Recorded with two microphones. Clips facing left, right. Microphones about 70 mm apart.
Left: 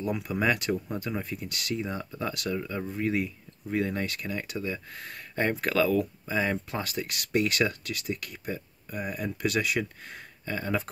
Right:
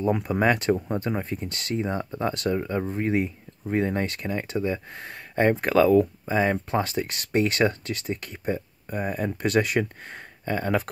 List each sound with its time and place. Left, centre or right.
0.0 s speech: right